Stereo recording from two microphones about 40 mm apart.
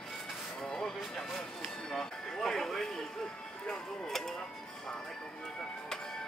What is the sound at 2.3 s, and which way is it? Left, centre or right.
Music, centre.